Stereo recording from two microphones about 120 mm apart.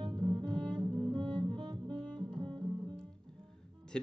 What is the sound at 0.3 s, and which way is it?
Double bass, 40° right (ahead or behind).